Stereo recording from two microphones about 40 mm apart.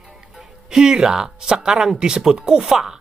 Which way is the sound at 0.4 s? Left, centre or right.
Centre.